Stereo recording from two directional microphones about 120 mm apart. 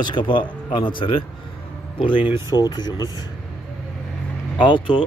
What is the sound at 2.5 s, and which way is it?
Speech, 35° left (ahead or behind).